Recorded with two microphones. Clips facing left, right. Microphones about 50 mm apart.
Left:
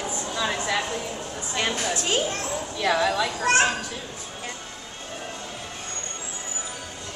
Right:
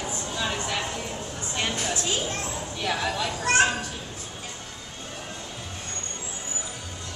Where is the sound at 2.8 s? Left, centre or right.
Left.